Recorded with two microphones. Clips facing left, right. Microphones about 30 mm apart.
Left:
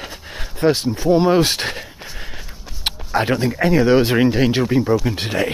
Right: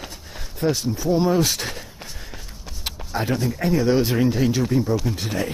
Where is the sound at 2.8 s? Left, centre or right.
Left.